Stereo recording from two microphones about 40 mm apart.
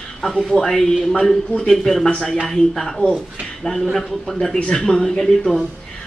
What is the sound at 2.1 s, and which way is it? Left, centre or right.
Speech, left.